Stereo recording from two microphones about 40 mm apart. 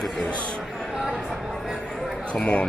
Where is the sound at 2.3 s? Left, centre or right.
Left.